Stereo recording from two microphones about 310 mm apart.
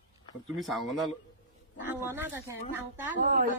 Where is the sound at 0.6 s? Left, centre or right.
Centre.